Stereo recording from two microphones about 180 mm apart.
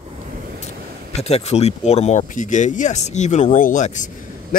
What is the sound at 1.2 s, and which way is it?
Speech, 35° left (ahead or behind).